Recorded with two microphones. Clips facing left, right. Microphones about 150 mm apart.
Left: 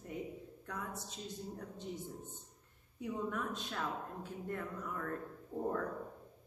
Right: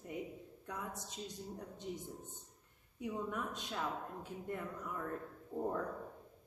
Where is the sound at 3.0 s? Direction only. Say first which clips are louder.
Left 1 dB; 15° right (ahead or behind).